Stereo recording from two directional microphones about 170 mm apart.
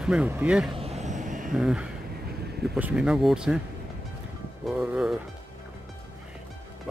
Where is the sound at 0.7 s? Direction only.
40° right (ahead or behind).